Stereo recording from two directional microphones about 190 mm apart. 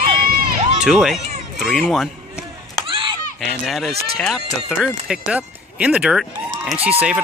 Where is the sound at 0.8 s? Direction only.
Centre (ahead or behind).